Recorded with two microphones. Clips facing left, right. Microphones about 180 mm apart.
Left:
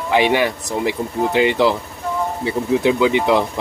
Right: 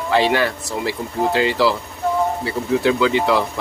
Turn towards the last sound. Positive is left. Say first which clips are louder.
# left 2 dB
turn(degrees=20)  # may be behind; listen again after turning